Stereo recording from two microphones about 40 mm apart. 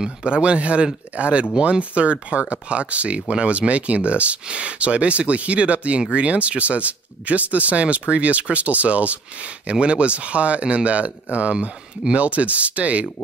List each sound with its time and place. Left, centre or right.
0.0 s speech: right